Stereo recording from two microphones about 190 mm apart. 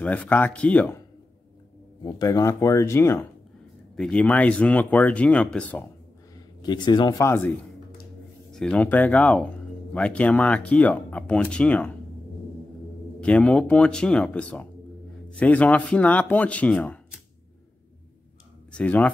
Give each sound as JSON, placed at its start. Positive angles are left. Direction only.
{"t": 0.0, "sound": "speech", "side_deg": 5}
{"t": 2.1, "sound": "speech", "side_deg": 20}
{"t": 6.6, "sound": "speech", "side_deg": 20}
{"t": 13.2, "sound": "speech", "side_deg": 5}
{"t": 18.7, "sound": "speech", "side_deg": 5}